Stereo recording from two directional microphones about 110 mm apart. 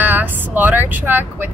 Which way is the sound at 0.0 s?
15° right (ahead or behind).